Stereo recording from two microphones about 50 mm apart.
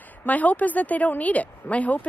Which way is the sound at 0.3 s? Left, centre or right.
Left.